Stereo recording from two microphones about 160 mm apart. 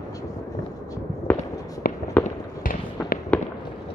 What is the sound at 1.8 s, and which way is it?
Fireworks, 65° left (ahead or behind).